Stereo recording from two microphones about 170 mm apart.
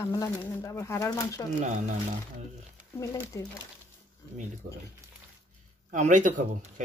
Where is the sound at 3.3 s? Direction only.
15° left (ahead or behind).